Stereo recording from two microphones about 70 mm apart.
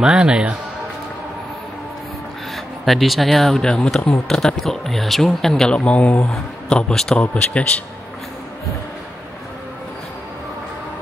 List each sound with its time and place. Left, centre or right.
0.0 s speech: centre
2.5 s speech: centre
6.3 s speech: centre